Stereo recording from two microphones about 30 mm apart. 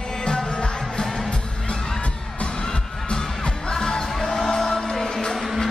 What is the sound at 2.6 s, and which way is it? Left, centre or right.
Music, left.